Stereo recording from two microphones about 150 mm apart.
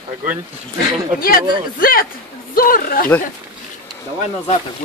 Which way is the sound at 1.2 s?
75° left (ahead or behind).